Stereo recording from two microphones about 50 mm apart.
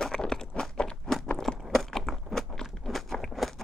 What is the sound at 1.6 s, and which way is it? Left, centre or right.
Biting, centre.